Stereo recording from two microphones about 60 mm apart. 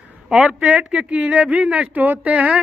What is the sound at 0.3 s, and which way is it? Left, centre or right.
Speech, centre.